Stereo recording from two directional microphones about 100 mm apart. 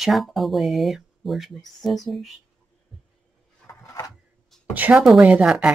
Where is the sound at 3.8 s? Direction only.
35° left (ahead or behind).